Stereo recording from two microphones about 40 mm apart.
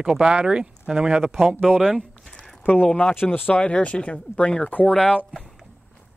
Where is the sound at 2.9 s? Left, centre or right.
Centre.